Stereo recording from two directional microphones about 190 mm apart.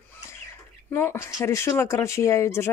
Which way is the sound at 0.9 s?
15° left (ahead or behind).